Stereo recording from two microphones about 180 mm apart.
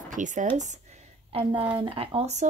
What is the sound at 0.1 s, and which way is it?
Speech, 45° right (ahead or behind).